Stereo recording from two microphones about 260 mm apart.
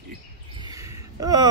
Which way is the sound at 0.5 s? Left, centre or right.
Centre.